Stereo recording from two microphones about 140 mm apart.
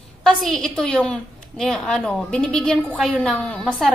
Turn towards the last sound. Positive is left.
turn(degrees=5)  # may be behind; listen again after turning